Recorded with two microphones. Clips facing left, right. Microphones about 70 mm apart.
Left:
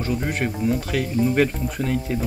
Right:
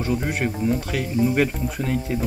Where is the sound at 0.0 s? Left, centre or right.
Centre.